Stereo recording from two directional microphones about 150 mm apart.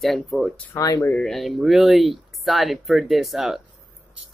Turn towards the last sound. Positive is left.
turn(degrees=0)  # may be behind; listen again after turning